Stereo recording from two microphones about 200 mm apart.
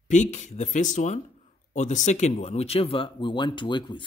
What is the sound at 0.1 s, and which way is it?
Speech, 35° left (ahead or behind).